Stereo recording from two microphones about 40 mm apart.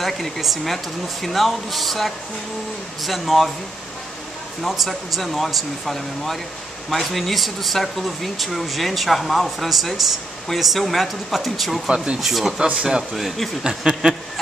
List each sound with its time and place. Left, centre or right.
0.4 s speech: centre
4.6 s speech: centre
11.9 s speech: right
12.2 s speech: centre
12.7 s a sound: centre
13.1 s speech: centre
13.7 s a sound: centre